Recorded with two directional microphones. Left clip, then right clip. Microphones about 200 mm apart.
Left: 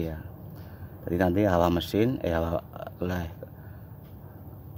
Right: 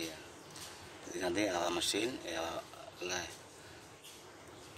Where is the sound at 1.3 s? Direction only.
45° left (ahead or behind).